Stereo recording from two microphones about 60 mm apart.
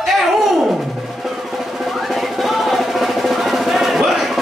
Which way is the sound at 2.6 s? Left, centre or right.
Centre.